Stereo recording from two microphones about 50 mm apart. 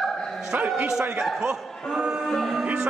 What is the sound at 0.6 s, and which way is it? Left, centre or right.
Speech, right.